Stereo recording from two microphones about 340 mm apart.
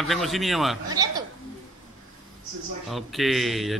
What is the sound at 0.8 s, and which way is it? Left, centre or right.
Speech, centre.